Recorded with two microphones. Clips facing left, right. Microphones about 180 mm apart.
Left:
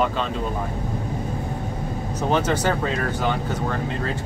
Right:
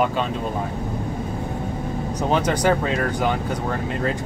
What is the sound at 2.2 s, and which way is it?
Speech, 15° right (ahead or behind).